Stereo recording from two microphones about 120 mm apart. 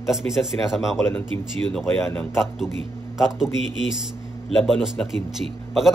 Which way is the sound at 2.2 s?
Centre (ahead or behind).